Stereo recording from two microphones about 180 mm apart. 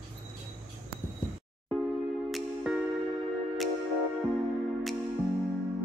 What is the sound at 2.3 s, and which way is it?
Music, centre (ahead or behind).